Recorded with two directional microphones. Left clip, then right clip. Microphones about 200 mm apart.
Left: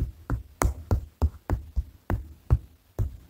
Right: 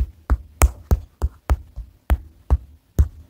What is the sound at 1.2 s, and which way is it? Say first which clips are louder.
Music: even; 10° right (ahead or behind).